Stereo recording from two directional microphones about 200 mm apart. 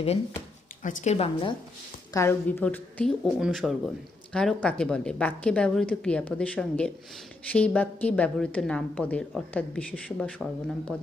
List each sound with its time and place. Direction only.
0.8 s a woman's voice: 35° left (ahead or behind)
2.1 s a woman's voice: 10° left (ahead or behind)